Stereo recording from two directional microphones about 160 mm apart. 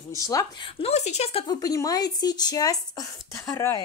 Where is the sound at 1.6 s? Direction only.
20° left (ahead or behind).